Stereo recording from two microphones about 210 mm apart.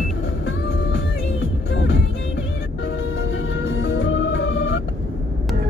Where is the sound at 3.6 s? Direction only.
65° left (ahead or behind).